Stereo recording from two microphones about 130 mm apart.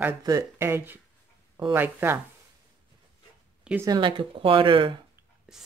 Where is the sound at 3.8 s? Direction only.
35° right (ahead or behind).